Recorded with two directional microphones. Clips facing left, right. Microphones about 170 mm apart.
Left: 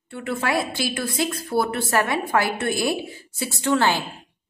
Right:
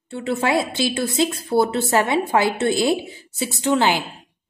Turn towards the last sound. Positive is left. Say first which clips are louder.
# right 2 dB
turn(degrees=-15)  # may be behind; listen again after turning